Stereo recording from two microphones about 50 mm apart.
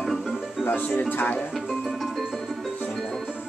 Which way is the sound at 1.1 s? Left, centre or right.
Left.